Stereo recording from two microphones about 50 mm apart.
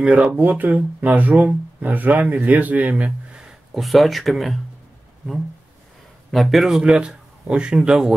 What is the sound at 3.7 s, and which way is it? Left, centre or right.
Speech, centre.